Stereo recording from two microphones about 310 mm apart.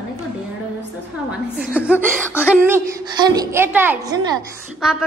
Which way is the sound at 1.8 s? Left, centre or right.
Centre.